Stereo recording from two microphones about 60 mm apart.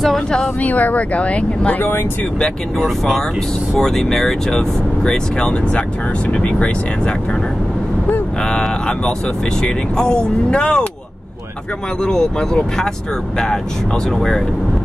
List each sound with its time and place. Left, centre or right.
0.6 s speech: left
3.7 s speech: centre
8.5 s speech: centre
12.0 s speech: centre
14.1 s speech: centre